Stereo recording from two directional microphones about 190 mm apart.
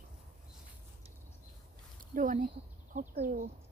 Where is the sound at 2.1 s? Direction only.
45° right (ahead or behind).